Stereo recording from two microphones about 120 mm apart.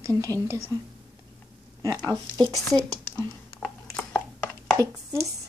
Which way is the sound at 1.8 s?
35° right (ahead or behind).